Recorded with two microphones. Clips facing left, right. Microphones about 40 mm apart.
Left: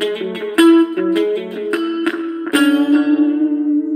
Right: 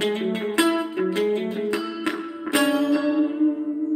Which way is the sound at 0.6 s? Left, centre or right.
Left.